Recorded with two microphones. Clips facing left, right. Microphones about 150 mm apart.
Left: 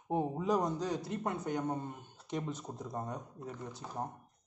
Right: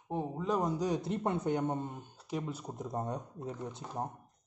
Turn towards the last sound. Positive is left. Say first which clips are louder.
# right 2 dB
turn(degrees=-15)  # may be behind; listen again after turning